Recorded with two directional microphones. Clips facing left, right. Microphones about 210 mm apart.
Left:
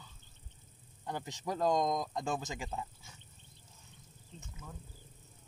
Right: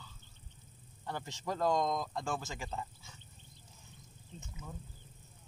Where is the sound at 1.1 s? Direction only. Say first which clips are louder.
Left 1 dB; 15° left (ahead or behind).